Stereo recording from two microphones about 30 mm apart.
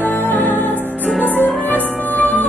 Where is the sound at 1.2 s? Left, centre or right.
Left.